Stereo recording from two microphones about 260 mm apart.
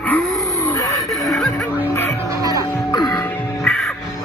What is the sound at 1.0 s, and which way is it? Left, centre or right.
Music, centre.